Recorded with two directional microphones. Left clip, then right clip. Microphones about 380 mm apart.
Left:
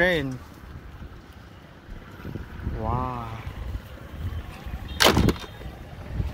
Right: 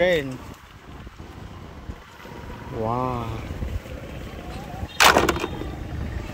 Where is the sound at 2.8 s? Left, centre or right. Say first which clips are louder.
Right 3 dB; centre.